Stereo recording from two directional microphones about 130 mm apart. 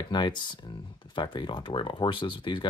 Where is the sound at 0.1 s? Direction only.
35° left (ahead or behind).